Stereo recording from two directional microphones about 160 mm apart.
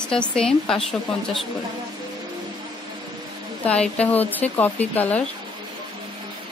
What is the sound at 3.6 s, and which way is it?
Speech, 5° left (ahead or behind).